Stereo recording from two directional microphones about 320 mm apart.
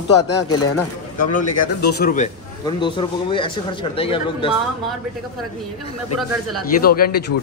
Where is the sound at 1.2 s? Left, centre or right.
Left.